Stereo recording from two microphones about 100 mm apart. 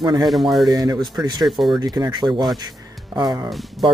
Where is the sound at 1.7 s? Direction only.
40° right (ahead or behind).